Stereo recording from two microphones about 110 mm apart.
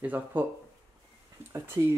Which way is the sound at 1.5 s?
20° right (ahead or behind).